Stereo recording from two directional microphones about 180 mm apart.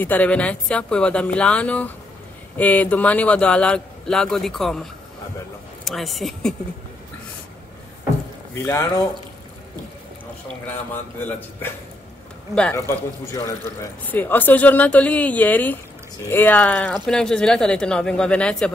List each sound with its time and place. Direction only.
0.0 s speech: 10° left (ahead or behind)
5.9 s speech: centre (ahead or behind)
8.6 s speech: 15° left (ahead or behind)
10.9 s speech: 10° left (ahead or behind)